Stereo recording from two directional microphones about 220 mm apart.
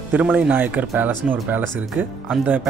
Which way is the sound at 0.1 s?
5° right (ahead or behind).